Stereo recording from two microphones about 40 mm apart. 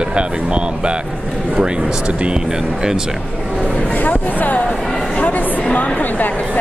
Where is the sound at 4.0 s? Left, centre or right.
Left.